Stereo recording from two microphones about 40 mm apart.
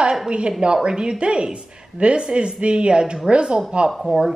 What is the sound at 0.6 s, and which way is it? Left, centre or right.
Speech, right.